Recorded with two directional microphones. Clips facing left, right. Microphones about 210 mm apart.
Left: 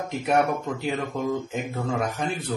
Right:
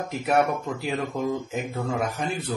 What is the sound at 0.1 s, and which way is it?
Speech, centre (ahead or behind).